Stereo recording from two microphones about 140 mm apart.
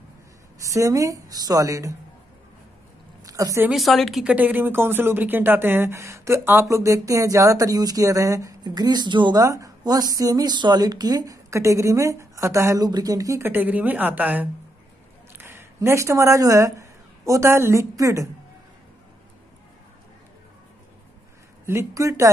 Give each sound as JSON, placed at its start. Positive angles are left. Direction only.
{"t": 0.6, "sound": "speech", "side_deg": -20}
{"t": 3.3, "sound": "a woman's voice", "side_deg": -25}
{"t": 3.7, "sound": "speech", "side_deg": 0}
{"t": 21.6, "sound": "speech", "side_deg": -20}